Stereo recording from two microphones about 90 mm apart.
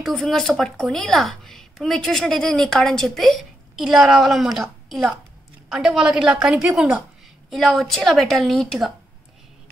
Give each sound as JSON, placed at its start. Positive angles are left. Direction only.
{"t": 0.0, "sound": "a woman's voice", "side_deg": 5}